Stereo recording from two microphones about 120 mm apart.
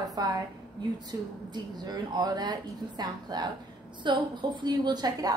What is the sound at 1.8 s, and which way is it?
A woman's voice, 35° right (ahead or behind).